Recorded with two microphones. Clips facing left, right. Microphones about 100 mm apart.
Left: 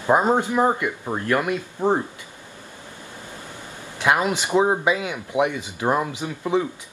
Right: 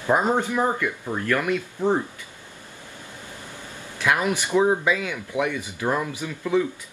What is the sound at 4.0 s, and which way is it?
Speech, 20° left (ahead or behind).